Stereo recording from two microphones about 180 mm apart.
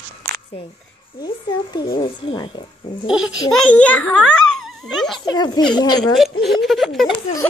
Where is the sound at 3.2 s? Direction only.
90° left.